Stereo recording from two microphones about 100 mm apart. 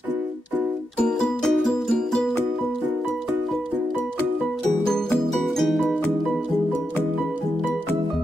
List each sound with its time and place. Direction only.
1.0 s music: 5° left (ahead or behind)
5.7 s music: centre (ahead or behind)